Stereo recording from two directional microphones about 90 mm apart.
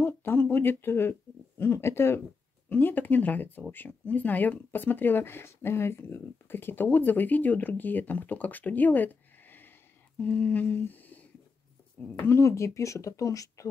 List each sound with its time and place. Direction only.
0.0 s a sound: 20° left (ahead or behind)
1.6 s speech: 25° left (ahead or behind)
10.1 s humming: 15° left (ahead or behind)
12.2 s speech: 30° left (ahead or behind)